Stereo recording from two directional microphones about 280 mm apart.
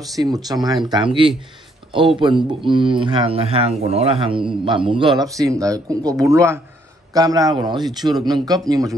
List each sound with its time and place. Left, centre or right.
0.1 s a man's voice: centre